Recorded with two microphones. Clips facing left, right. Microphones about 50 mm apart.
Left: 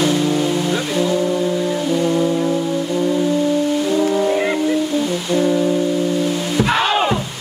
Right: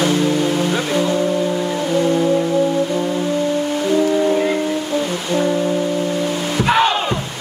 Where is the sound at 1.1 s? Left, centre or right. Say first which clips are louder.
Even; centre.